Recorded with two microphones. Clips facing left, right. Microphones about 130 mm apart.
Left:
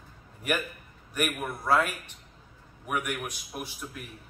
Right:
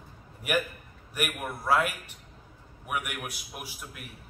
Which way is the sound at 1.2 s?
10° right (ahead or behind).